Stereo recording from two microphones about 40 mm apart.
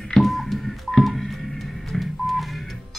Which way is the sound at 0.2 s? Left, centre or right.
Centre.